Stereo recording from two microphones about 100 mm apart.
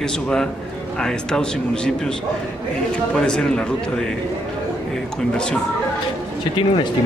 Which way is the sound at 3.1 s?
10° left (ahead or behind).